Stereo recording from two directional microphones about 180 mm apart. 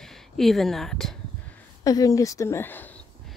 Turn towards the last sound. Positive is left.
turn(degrees=10)  # may be behind; listen again after turning